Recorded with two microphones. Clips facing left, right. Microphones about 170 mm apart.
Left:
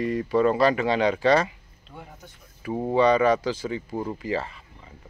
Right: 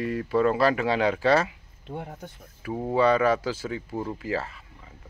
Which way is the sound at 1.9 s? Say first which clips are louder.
Right 8 dB; 55° right (ahead or behind).